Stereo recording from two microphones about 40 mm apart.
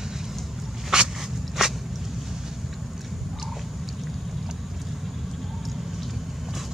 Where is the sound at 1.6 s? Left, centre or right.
Centre.